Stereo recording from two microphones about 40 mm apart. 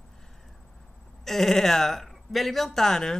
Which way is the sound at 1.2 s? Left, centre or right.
Centre.